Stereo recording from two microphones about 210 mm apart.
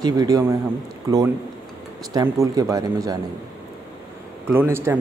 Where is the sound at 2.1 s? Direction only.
15° right (ahead or behind).